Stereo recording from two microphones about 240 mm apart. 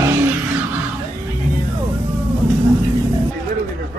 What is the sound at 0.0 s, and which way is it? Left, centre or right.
Vehicle, centre.